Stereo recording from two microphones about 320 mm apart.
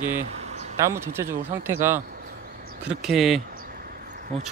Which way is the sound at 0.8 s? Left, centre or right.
Centre.